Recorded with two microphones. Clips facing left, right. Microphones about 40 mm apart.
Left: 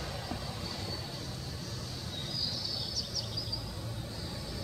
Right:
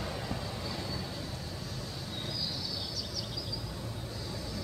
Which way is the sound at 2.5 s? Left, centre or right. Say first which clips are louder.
Right 1 dB; centre.